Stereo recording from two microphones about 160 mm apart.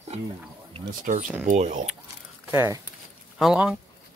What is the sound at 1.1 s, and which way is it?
Speech, 55° right (ahead or behind).